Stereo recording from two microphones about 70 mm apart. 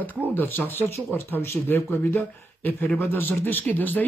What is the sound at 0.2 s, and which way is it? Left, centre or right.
Speech, left.